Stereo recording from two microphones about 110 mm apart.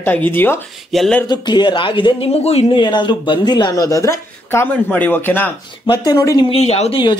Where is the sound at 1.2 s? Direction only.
40° left (ahead or behind); by 4.7 s 25° left (ahead or behind).